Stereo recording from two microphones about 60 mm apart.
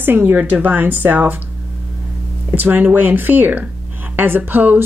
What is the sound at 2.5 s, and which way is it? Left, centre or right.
A woman's voice, right.